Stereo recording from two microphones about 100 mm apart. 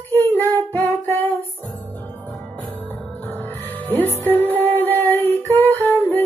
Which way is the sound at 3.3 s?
20° left (ahead or behind).